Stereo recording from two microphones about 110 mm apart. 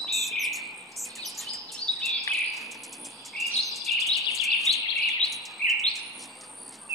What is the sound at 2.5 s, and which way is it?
Bird, centre (ahead or behind).